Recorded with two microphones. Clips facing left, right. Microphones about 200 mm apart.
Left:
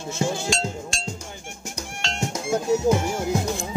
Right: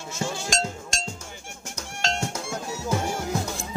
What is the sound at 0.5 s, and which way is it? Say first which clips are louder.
Music: left 3 dB; 45° right (ahead or behind).